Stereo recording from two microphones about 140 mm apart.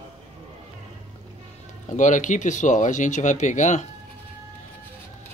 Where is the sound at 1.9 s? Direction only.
60° left (ahead or behind).